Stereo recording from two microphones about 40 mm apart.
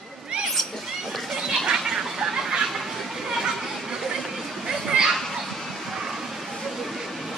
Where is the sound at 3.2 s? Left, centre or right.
Centre.